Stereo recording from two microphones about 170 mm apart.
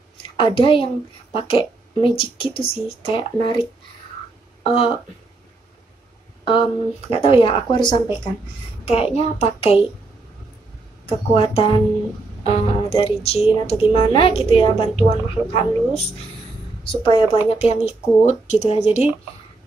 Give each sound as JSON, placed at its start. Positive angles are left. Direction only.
{"t": 0.4, "sound": "speech", "side_deg": 30}
{"t": 4.6, "sound": "speech", "side_deg": 35}
{"t": 6.4, "sound": "speech", "side_deg": 30}
{"t": 11.1, "sound": "speech", "side_deg": 35}
{"t": 16.8, "sound": "speech", "side_deg": 30}